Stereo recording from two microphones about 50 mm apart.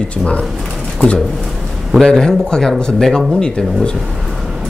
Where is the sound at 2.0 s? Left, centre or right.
Centre.